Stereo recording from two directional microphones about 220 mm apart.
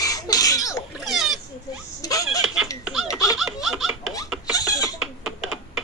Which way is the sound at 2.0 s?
15° left (ahead or behind).